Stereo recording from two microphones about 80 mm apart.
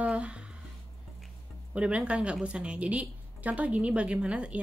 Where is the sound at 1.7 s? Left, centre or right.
Centre.